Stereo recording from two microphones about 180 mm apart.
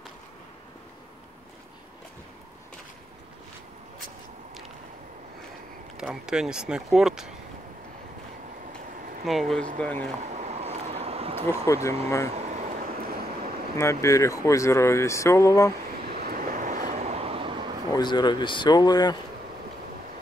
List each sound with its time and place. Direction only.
5.9 s speech: 5° right (ahead or behind)
9.2 s speech: centre (ahead or behind)
10.2 s a sound: 40° right (ahead or behind)
11.6 s speech: 15° left (ahead or behind)
12.3 s vehicle: 35° right (ahead or behind)
13.0 s vehicle: 55° right (ahead or behind)
13.7 s speech: 15° left (ahead or behind)
16.1 s vehicle: 55° right (ahead or behind); by 17.6 s 30° right (ahead or behind)
17.9 s speech: 25° left (ahead or behind)